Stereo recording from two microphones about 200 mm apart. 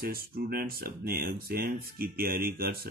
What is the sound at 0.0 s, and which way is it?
Speech, 50° right (ahead or behind).